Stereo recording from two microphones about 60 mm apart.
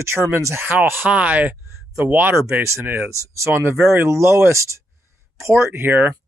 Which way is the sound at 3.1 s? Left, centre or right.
Right.